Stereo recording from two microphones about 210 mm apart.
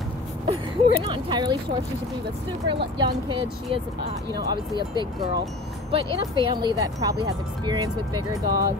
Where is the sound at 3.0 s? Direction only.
20° right (ahead or behind).